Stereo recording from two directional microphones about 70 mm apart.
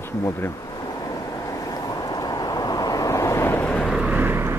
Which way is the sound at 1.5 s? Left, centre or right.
Left.